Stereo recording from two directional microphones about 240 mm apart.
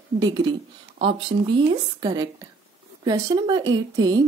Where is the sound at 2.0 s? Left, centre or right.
Centre.